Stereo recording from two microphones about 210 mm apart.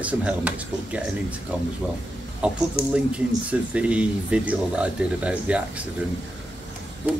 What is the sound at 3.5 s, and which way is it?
Speech, 5° right (ahead or behind).